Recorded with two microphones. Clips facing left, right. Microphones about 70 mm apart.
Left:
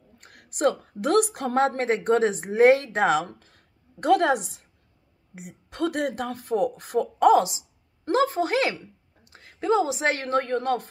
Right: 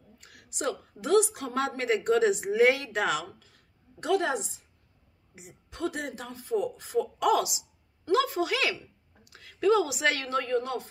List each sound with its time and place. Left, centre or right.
0.2 s a woman's voice: left
3.3 s speech: left
7.2 s a woman's voice: left